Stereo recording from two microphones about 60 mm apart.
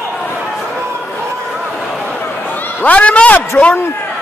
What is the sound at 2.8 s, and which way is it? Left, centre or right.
A man's voice, left.